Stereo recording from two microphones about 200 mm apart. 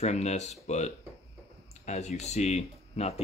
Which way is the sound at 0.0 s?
35° left (ahead or behind).